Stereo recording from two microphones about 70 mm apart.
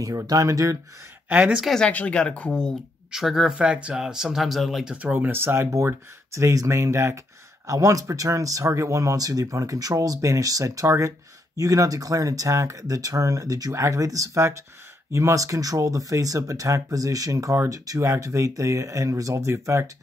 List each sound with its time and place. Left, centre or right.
0.0 s speech: right
1.3 s speech: right
1.8 s speech: centre
3.1 s speech: centre
3.5 s speech: centre
4.9 s speech: right
6.5 s speech: right